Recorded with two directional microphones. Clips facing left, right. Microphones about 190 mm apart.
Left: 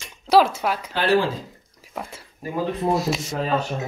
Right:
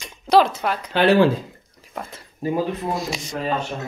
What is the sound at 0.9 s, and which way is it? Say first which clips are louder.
Speech: right 5 dB; 60° right (ahead or behind).